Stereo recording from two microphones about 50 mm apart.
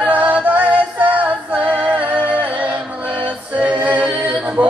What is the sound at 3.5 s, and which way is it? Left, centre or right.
A capella, right.